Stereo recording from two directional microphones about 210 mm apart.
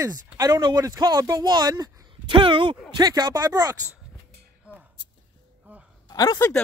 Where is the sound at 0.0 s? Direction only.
15° right (ahead or behind).